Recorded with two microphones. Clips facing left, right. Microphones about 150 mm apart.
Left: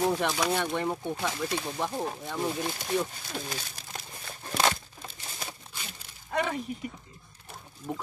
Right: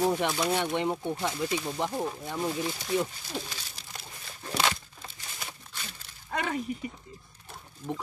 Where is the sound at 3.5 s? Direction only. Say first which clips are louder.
Left 6 dB; 50° left (ahead or behind).